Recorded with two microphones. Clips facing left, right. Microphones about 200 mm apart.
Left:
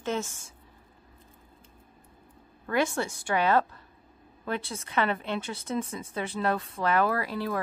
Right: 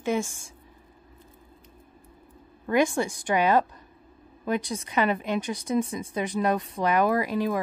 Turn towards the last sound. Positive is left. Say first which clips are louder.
# right 5 dB
turn(degrees=-15)  # may be behind; listen again after turning